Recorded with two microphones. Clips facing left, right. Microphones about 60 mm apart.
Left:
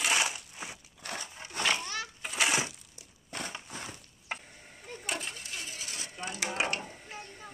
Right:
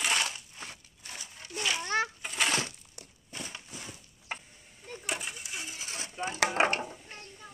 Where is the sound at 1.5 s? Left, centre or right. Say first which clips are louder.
Left 2 dB; left.